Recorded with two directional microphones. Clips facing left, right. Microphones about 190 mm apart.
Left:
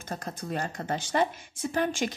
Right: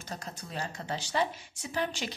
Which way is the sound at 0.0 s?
55° left (ahead or behind).